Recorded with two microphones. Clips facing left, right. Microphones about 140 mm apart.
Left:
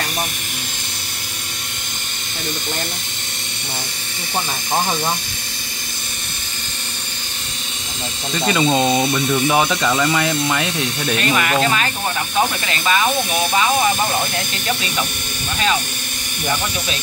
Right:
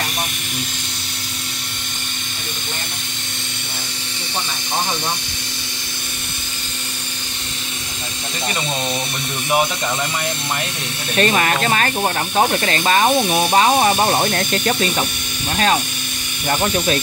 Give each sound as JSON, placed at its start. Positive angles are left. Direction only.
{"t": 9.3, "sound": "speech", "side_deg": 90}
{"t": 11.1, "sound": "speech", "side_deg": -40}
{"t": 13.9, "sound": "speech", "side_deg": -60}